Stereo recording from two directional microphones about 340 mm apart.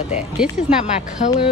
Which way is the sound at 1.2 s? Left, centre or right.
Left.